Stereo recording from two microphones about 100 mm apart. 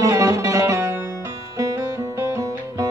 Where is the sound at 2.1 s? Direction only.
35° right (ahead or behind).